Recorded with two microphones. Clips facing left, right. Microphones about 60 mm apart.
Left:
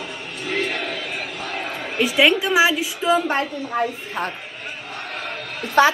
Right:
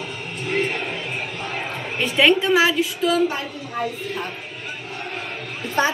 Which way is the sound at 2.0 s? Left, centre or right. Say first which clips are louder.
Even; centre.